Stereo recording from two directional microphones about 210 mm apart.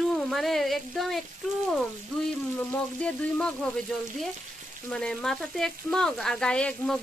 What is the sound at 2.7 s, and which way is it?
Speech, 5° left (ahead or behind).